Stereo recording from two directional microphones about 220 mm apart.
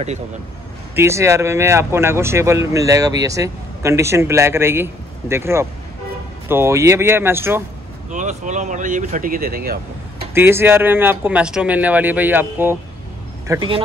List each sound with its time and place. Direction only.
0.9 s speech: 10° right (ahead or behind)
8.1 s speech: 35° right (ahead or behind)
10.3 s speech: 10° right (ahead or behind)
13.5 s speech: 20° right (ahead or behind)